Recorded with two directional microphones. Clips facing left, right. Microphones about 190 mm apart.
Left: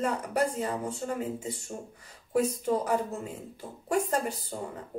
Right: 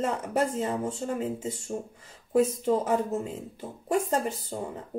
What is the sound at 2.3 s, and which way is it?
Speech, 25° right (ahead or behind).